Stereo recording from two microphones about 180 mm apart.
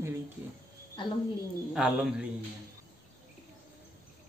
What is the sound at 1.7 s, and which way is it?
Speech, 5° right (ahead or behind).